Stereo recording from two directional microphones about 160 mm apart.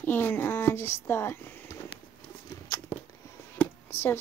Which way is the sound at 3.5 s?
15° left (ahead or behind).